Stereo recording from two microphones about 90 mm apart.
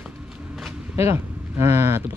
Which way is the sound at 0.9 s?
30° right (ahead or behind).